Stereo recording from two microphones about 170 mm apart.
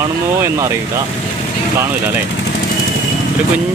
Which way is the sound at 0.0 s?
15° right (ahead or behind).